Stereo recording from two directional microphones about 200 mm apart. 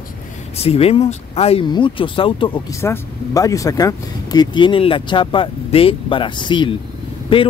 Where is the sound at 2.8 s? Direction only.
15° left (ahead or behind).